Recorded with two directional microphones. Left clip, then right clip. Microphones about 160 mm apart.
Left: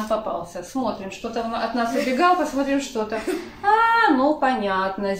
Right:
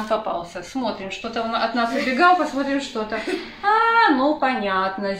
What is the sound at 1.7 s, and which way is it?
A woman's voice, 20° left (ahead or behind).